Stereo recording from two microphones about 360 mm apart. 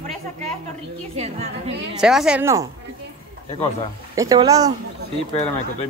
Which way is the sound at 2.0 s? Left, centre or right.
Centre.